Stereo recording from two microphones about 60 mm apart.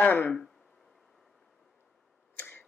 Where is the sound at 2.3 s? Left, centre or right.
Left.